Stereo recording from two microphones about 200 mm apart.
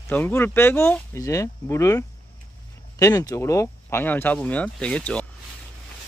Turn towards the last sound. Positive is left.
turn(degrees=5)  # may be behind; listen again after turning